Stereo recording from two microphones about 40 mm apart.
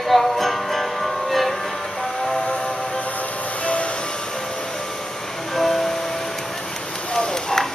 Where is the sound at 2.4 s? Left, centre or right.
Left.